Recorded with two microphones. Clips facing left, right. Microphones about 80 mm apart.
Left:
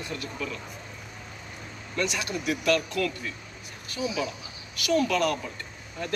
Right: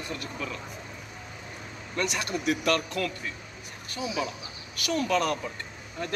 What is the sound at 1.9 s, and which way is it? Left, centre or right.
Speech, right.